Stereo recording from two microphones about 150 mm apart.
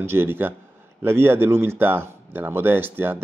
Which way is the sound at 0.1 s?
15° right (ahead or behind).